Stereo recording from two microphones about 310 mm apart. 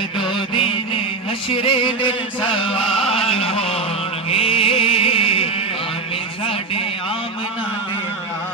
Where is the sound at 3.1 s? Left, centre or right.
Centre.